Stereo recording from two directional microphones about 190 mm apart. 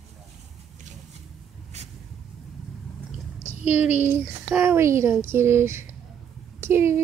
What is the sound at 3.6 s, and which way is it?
A child's voice, 10° right (ahead or behind).